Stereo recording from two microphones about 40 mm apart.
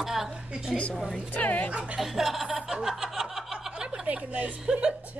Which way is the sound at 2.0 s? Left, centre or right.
Centre.